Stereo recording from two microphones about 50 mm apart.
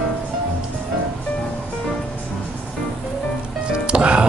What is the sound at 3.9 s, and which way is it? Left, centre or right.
Music, right.